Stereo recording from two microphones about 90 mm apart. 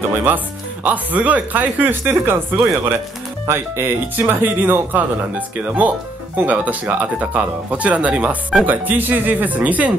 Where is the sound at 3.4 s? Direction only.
25° right (ahead or behind).